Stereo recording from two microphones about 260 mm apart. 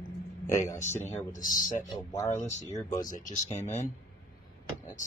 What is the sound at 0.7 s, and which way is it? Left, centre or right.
Speech, centre.